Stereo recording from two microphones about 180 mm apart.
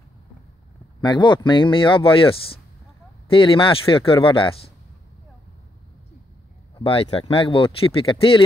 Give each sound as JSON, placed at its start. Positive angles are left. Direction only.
{"t": 1.0, "sound": "speech", "side_deg": 25}
{"t": 6.8, "sound": "speech", "side_deg": 30}